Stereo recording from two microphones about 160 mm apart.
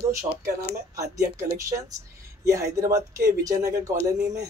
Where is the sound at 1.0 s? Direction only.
20° right (ahead or behind).